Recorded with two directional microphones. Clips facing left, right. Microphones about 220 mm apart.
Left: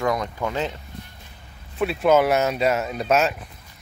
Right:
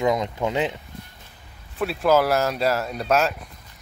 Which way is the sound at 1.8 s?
Centre (ahead or behind).